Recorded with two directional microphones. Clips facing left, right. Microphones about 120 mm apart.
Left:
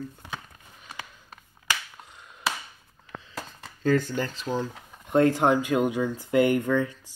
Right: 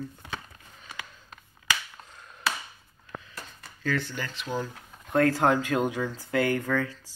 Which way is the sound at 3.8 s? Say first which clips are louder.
Left 7 dB; 40° left (ahead or behind).